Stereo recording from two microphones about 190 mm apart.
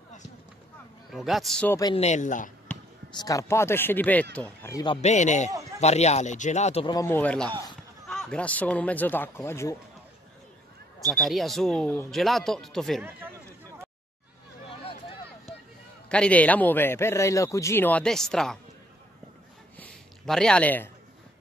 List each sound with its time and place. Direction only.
1.1 s speech: centre (ahead or behind)
2.0 s speech: 35° left (ahead or behind)
3.2 s a man's voice: 20° left (ahead or behind)
5.0 s speech: 40° left (ahead or behind)
5.5 s a sound: 15° right (ahead or behind)
5.8 s speech: 35° left (ahead or behind)
7.0 s a man's voice: 10° left (ahead or behind)
11.1 s speech: centre (ahead or behind)
14.7 s a sound: 30° left (ahead or behind)
16.1 s a man's voice: 5° left (ahead or behind)
19.8 s a sound: 5° left (ahead or behind)